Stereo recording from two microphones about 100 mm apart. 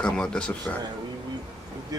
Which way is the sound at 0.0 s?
10° left (ahead or behind).